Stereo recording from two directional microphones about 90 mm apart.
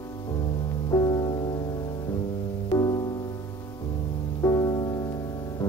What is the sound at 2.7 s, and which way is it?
Music, 45° left (ahead or behind).